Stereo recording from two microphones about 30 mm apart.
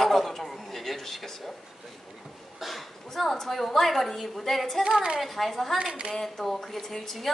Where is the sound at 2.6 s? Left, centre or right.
Centre.